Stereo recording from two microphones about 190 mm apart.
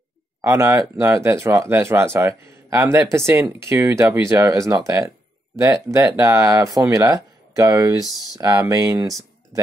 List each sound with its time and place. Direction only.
0.4 s speech: 15° right (ahead or behind)